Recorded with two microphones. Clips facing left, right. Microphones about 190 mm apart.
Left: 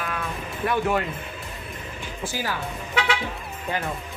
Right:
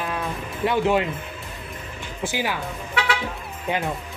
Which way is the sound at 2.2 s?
20° right (ahead or behind).